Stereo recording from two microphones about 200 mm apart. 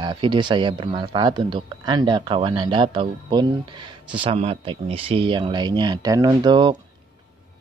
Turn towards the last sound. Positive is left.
turn(degrees=-25)  # may be behind; listen again after turning